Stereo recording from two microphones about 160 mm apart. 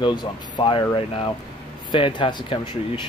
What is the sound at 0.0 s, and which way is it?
Speech, 30° left (ahead or behind).